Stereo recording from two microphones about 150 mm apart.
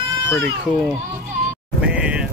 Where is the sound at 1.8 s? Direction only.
10° right (ahead or behind).